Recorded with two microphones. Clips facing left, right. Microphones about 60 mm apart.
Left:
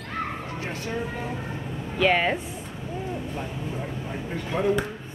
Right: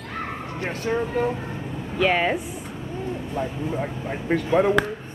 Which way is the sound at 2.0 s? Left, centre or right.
Centre.